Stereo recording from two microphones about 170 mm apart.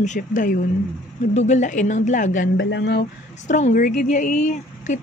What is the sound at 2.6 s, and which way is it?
Speech, 80° left.